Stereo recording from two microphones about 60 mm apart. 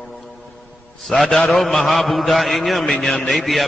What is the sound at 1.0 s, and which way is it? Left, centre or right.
A man's voice, centre.